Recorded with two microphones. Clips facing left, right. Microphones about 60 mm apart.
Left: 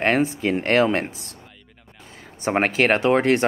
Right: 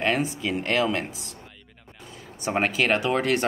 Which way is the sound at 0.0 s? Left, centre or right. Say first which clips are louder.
Left 5 dB; left.